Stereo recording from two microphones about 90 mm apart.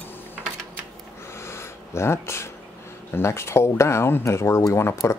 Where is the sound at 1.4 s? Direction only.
30° left (ahead or behind).